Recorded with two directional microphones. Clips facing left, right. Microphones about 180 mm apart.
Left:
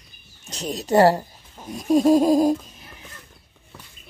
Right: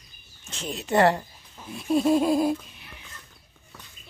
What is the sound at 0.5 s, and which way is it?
Speech, 40° left (ahead or behind).